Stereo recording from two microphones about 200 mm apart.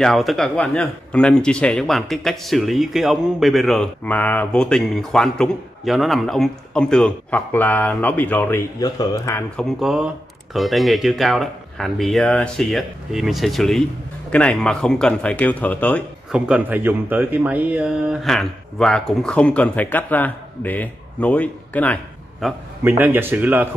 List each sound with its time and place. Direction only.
0.0 s speech: centre (ahead or behind); by 9.4 s 15° left (ahead or behind)
9.6 s speech: centre (ahead or behind)
16.3 s speech: 5° right (ahead or behind)
22.8 s a man's voice: 10° right (ahead or behind)